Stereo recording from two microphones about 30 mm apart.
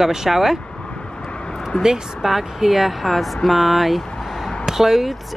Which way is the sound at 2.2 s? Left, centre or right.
Centre.